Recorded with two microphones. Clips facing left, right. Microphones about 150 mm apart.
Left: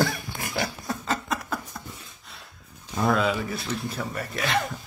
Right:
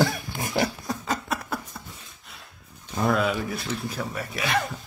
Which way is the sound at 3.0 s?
Centre (ahead or behind).